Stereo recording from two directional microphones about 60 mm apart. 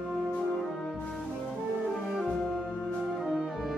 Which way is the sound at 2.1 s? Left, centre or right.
Centre.